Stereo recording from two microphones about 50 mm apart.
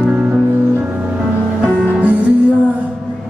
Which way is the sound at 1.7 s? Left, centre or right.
Centre.